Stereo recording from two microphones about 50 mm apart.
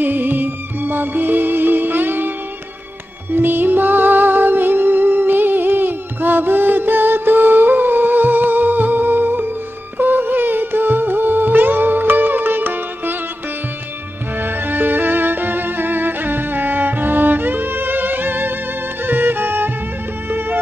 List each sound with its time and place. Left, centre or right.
0.0 s music: right
14.4 s music: right